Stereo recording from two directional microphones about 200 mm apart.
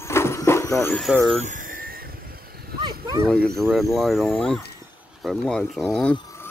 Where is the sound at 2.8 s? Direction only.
20° right (ahead or behind).